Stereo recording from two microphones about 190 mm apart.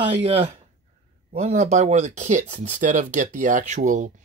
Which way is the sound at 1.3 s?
35° right (ahead or behind).